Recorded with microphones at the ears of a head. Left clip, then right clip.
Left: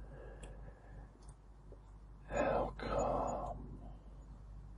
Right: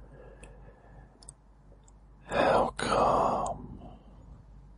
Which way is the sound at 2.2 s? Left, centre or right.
Right.